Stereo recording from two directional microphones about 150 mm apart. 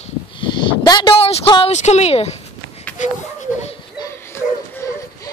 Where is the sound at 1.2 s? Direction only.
40° left (ahead or behind).